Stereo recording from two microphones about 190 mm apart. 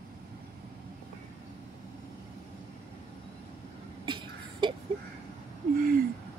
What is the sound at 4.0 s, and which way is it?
Cough, 25° right (ahead or behind).